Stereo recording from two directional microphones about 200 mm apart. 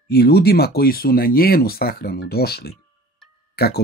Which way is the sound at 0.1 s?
50° left (ahead or behind).